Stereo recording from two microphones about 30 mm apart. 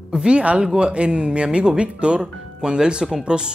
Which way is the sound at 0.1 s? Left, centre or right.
Right.